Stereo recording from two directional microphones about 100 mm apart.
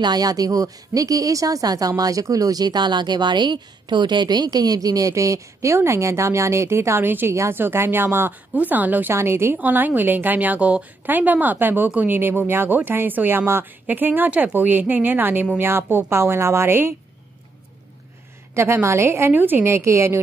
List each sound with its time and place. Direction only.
0.0 s a woman's voice: 40° right (ahead or behind); by 16.9 s 20° right (ahead or behind)
18.5 s a woman's voice: 25° right (ahead or behind)